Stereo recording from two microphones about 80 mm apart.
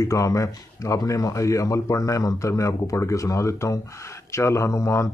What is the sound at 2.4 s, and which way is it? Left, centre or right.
Speech, left.